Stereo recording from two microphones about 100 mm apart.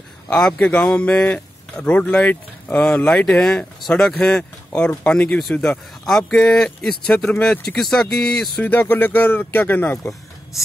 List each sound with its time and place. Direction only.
0.3 s speech: 10° left (ahead or behind)
8.6 s speech: 15° left (ahead or behind)